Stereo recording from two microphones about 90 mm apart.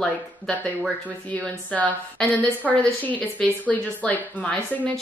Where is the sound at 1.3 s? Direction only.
15° left (ahead or behind).